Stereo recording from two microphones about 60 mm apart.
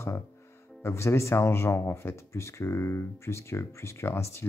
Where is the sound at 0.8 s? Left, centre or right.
Left.